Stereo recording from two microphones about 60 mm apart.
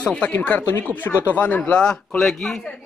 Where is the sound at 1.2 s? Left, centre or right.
Left.